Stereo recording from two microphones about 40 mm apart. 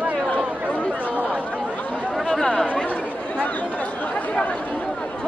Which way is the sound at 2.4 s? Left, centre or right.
Centre.